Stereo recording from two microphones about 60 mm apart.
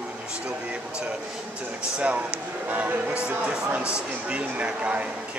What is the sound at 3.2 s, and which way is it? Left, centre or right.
Speech, right.